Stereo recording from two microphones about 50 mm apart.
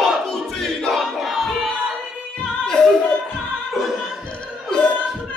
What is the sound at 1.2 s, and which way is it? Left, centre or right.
Music, centre.